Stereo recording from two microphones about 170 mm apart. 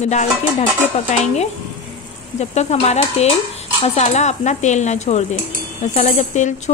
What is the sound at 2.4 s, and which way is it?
Dishes, 40° left (ahead or behind).